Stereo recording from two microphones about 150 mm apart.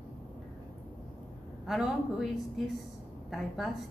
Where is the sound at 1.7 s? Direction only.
Centre (ahead or behind).